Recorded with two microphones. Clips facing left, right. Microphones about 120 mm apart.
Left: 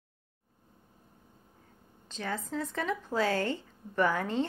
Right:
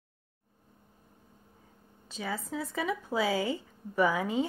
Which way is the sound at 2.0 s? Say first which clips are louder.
Even; 5° right (ahead or behind).